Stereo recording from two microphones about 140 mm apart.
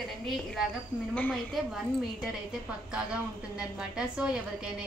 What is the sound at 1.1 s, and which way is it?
Speech, 10° left (ahead or behind).